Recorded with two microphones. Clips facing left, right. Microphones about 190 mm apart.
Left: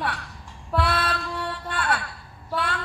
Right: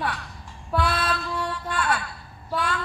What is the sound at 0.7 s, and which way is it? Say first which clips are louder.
Music: even; 65° left (ahead or behind).